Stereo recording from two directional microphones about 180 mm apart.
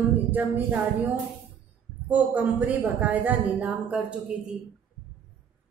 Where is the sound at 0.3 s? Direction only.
10° right (ahead or behind).